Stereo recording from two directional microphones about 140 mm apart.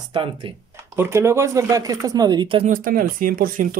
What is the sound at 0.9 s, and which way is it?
Speech, 15° right (ahead or behind).